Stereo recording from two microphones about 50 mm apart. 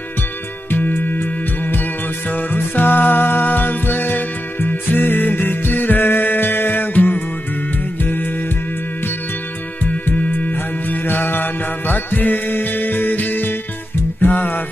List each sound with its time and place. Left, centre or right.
0.7 s music: left
10.0 s music: left